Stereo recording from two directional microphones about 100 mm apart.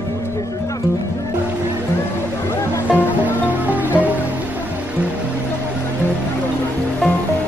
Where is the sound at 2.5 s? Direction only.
25° left (ahead or behind).